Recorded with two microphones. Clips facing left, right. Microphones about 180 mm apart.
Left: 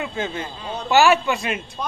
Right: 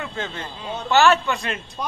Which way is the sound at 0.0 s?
15° left (ahead or behind).